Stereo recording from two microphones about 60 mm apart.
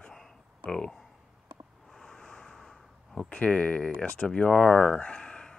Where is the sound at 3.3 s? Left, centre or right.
Left.